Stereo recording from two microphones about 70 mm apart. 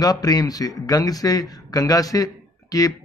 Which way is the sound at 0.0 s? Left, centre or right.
Left.